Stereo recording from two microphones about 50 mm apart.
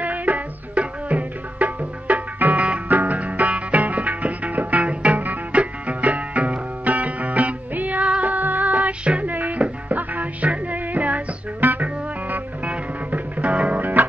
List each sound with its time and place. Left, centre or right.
0.0 s tabla: right
2.6 s music: right